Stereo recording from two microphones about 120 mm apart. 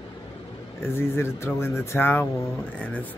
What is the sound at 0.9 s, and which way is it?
Speech, 20° left (ahead or behind).